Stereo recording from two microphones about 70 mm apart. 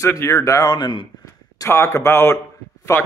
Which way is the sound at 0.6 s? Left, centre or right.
Left.